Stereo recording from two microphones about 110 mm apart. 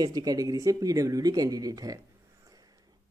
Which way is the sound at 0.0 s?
35° right (ahead or behind).